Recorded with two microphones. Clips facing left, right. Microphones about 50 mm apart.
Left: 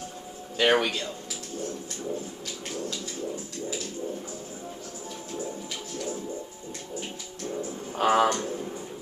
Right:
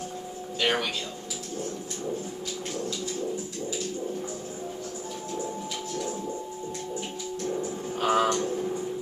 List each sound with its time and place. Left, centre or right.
0.6 s speech: centre
8.0 s speech: left